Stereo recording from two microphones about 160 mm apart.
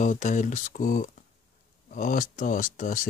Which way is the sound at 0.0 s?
50° left (ahead or behind).